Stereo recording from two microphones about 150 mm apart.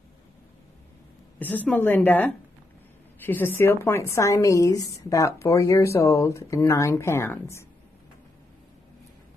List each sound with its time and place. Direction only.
1.4 s a woman's voice: 10° left (ahead or behind)